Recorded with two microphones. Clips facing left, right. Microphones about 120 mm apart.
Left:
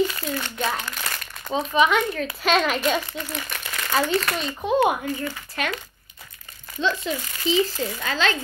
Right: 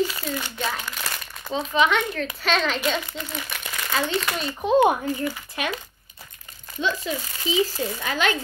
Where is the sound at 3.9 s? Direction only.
Centre (ahead or behind).